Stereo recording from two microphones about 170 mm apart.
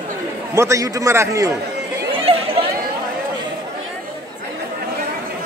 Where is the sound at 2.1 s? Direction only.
35° right (ahead or behind).